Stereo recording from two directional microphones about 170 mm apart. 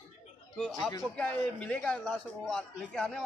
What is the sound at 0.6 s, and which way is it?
Speech, centre (ahead or behind).